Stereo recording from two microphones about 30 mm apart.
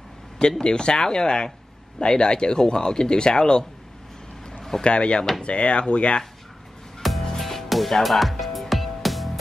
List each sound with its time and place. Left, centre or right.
0.4 s speech: left
4.6 s a sound: centre
4.8 s speech: left
7.0 s music: centre